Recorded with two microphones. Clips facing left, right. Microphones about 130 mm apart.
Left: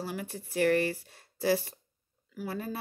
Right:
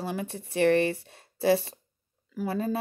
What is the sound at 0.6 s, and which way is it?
Speech, 25° right (ahead or behind).